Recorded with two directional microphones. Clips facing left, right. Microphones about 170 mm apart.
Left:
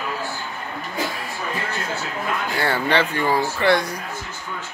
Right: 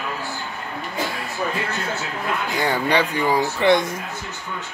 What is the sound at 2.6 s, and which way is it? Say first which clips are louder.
Speech: even; 15° right (ahead or behind).